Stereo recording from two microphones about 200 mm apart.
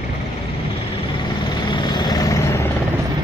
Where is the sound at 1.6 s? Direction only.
20° left (ahead or behind).